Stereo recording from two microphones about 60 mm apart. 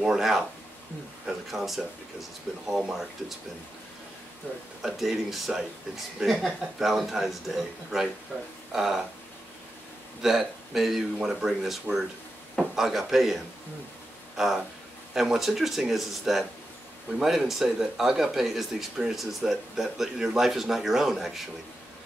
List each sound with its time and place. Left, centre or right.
0.0 s speech: centre
4.8 s speech: centre
10.2 s speech: centre